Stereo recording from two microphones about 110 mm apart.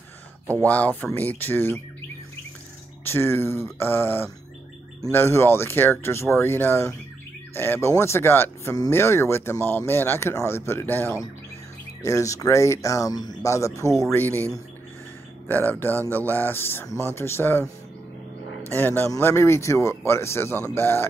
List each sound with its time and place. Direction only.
0.7 s speech: 15° left (ahead or behind)
3.0 s speech: 20° left (ahead or behind)
14.1 s speech: 20° left (ahead or behind)
18.8 s speech: 15° left (ahead or behind)